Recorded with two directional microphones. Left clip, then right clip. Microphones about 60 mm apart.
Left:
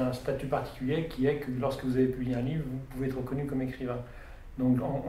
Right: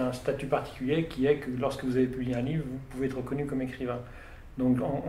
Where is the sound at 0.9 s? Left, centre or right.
Left.